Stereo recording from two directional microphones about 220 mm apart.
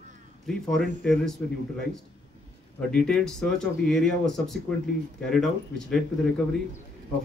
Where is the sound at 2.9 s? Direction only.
5° left (ahead or behind).